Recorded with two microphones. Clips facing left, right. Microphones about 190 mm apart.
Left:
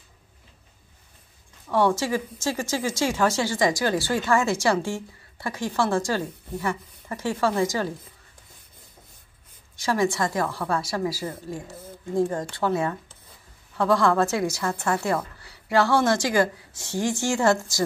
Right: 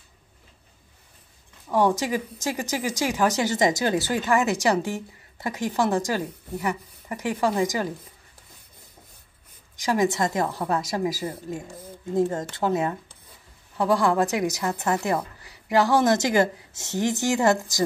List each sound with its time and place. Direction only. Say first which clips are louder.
1.7 s a woman's voice: even; 15° right (ahead or behind)
9.8 s a woman's voice: right 1 dB; 20° right (ahead or behind)